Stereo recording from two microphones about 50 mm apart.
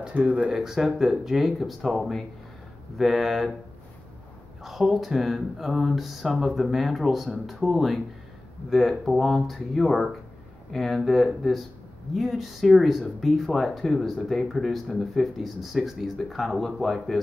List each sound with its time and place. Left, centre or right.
0.0 s speech: right
0.5 s speech: centre
4.6 s speech: centre